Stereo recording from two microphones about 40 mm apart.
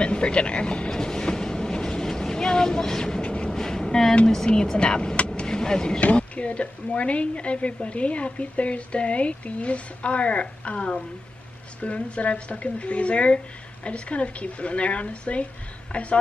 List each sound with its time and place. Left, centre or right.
0.0 s speech: left
0.9 s train: centre
3.4 s train: centre
4.5 s speech: left
5.3 s vehicle: centre
5.9 s a woman's voice: left